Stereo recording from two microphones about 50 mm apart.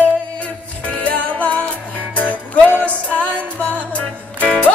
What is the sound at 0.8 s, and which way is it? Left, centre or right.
Music, left.